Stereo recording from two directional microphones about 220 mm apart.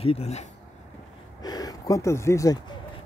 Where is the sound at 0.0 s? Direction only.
25° left (ahead or behind).